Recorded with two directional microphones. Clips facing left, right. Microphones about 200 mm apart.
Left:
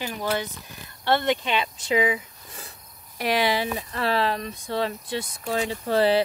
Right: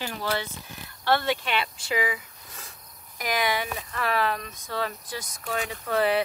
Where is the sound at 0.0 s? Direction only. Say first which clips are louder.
Left 2 dB; 15° left (ahead or behind).